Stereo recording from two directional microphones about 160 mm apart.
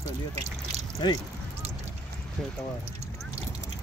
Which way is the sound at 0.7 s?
40° right (ahead or behind).